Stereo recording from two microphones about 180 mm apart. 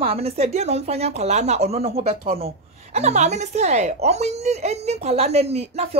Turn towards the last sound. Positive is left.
turn(degrees=-35)  # may be behind; listen again after turning